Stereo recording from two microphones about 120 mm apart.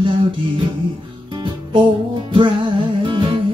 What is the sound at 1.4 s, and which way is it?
Music, 45° right (ahead or behind).